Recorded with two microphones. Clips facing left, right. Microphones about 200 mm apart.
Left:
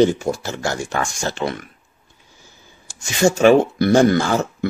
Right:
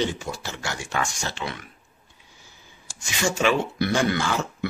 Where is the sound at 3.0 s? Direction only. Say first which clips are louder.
Left 10 dB; 45° left (ahead or behind).